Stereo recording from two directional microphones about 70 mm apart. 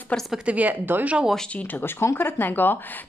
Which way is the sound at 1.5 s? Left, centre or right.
Left.